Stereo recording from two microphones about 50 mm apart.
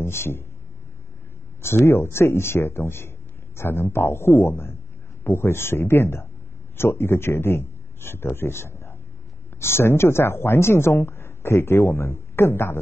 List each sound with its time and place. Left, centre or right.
0.0 s speech: left
1.6 s a man's voice: left